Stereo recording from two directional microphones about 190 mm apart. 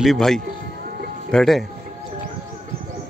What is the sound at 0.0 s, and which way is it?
A man's voice, centre (ahead or behind).